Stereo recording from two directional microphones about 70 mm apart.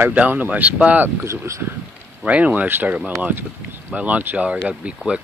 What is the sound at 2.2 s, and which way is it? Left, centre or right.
Speech, centre.